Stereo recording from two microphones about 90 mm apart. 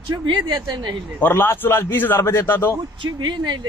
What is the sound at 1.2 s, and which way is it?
Speech, 25° left (ahead or behind).